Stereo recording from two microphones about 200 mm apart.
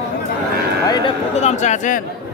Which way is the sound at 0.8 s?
20° left (ahead or behind).